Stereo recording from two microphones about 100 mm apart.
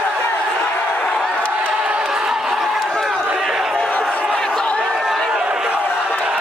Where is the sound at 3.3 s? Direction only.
5° right (ahead or behind).